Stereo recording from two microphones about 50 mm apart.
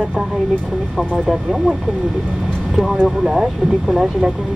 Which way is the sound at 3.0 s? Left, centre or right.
Centre.